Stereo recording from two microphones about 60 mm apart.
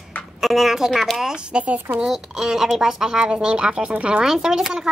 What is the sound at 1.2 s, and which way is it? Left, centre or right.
Speech, centre.